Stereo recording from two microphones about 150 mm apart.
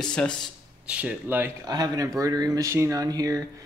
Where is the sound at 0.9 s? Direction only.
10° right (ahead or behind).